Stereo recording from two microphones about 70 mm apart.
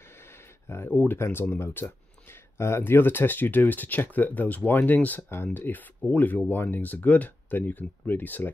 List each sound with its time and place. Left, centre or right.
0.7 s speech: left